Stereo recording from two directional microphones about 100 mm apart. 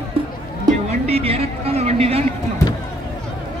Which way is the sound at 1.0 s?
80° right.